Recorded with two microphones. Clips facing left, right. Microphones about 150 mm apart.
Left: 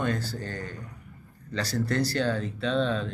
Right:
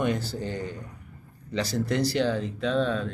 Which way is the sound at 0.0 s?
15° right (ahead or behind).